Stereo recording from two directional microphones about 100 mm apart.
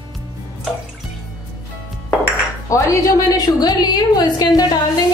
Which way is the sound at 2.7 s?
35° left (ahead or behind).